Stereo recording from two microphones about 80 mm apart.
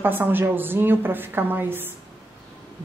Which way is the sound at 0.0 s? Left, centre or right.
Right.